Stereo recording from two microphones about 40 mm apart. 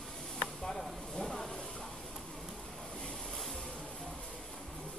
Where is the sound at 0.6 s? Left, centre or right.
Centre.